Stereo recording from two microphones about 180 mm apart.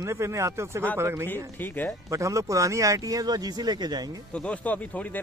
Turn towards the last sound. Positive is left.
turn(degrees=10)  # may be behind; listen again after turning